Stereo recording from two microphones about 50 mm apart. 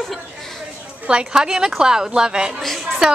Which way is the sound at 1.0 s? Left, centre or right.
Centre.